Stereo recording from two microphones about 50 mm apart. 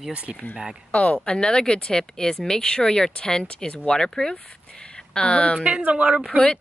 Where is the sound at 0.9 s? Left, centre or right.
Left.